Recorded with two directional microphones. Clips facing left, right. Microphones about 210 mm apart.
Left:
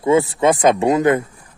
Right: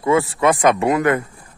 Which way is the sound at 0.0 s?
20° left (ahead or behind).